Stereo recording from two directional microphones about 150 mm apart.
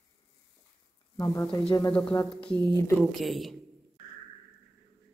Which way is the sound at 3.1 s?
Centre (ahead or behind).